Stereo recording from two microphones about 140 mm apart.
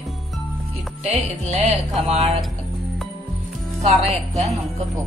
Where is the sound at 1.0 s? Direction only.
50° right (ahead or behind).